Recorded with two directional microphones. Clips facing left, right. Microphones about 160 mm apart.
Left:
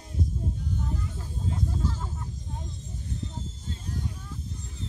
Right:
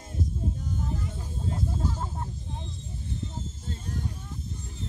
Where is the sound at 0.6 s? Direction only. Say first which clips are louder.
Even; 45° right (ahead or behind).